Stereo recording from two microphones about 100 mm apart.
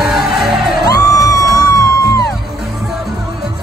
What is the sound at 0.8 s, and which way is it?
Music, 35° left (ahead or behind).